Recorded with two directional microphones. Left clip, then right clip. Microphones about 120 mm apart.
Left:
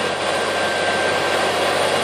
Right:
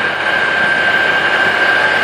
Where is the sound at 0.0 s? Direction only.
35° left (ahead or behind).